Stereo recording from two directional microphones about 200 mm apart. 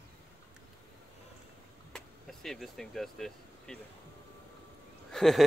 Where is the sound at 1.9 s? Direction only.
Centre (ahead or behind).